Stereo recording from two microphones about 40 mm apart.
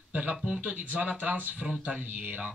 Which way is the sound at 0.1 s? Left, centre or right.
Right.